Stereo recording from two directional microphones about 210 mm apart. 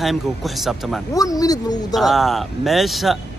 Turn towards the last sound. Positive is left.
turn(degrees=0)  # may be behind; listen again after turning